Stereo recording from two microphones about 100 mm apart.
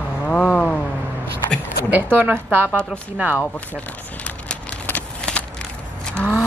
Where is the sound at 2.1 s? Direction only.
20° right (ahead or behind).